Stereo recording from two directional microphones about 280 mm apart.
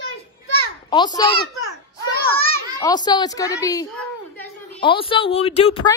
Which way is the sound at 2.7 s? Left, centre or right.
Centre.